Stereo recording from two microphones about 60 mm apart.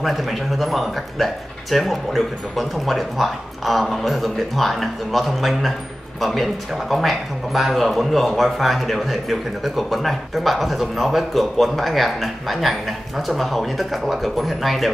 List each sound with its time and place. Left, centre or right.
0.0 s speech: centre